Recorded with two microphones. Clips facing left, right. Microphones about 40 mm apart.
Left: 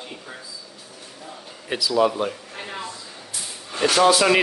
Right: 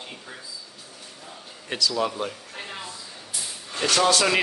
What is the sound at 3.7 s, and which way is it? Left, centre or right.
Speech, centre.